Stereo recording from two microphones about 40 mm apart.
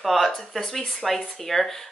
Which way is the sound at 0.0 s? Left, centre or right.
Centre.